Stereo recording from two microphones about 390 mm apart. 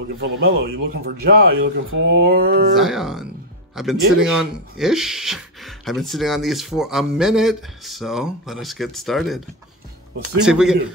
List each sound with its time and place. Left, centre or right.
0.2 s speech: right
1.5 s speech: right
2.2 s speech: right
2.7 s speech: centre
10.4 s speech: centre